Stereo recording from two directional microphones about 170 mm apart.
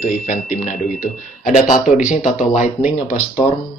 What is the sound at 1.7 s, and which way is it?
Speech, 50° left (ahead or behind).